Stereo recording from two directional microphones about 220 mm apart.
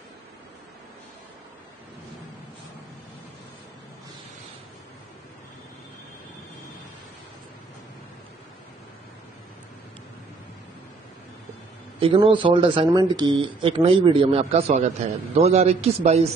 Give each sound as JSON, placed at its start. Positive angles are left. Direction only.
{"t": 12.0, "sound": "a man's voice", "side_deg": -25}